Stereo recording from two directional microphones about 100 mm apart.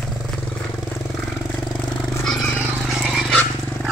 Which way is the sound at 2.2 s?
5° left (ahead or behind).